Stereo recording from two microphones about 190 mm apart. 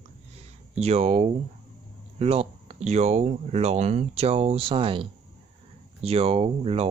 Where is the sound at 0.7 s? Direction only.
35° right (ahead or behind).